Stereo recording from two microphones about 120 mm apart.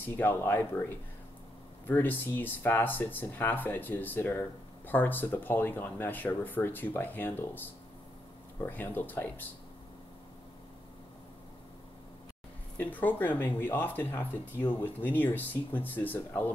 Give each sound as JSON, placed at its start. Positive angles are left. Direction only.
{"t": 0.0, "sound": "speech", "side_deg": 15}
{"t": 12.7, "sound": "speech", "side_deg": 15}